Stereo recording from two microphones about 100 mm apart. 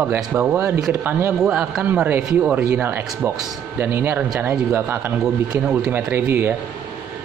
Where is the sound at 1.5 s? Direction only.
15° right (ahead or behind).